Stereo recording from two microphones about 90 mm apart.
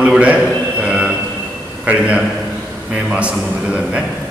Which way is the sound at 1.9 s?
15° right (ahead or behind).